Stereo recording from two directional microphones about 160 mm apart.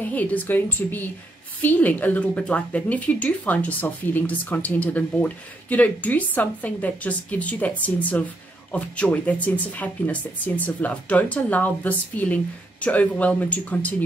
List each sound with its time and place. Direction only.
0.0 s speech: 10° left (ahead or behind)